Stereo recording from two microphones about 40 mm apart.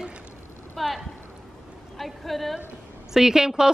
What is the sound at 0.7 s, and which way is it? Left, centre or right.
Clip-clop, centre.